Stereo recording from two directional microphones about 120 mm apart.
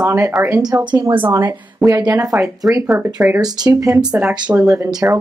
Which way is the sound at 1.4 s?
35° right (ahead or behind).